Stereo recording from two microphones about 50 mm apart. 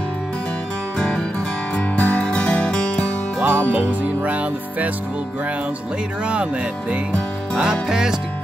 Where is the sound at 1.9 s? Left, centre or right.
Left.